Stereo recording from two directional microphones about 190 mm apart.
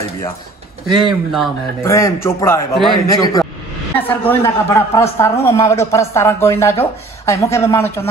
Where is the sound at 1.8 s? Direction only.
15° left (ahead or behind).